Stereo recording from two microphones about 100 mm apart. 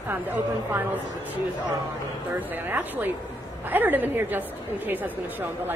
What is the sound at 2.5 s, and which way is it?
A woman's voice, 20° right (ahead or behind).